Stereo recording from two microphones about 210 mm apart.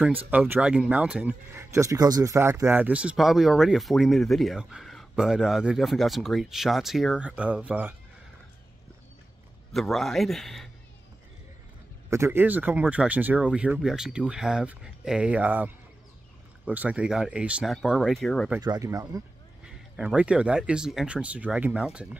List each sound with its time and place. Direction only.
0.0 s speech: 5° right (ahead or behind)
9.7 s speech: centre (ahead or behind)
12.1 s speech: 10° right (ahead or behind)
18.6 s speech: 15° right (ahead or behind)
19.6 s speech: 5° right (ahead or behind)